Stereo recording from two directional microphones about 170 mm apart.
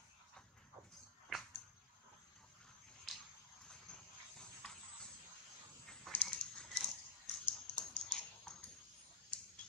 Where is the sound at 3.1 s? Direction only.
5° right (ahead or behind).